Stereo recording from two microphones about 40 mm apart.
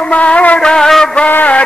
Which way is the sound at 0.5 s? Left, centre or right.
Centre.